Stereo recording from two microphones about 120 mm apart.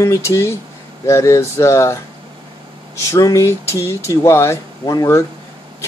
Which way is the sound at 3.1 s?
25° left (ahead or behind).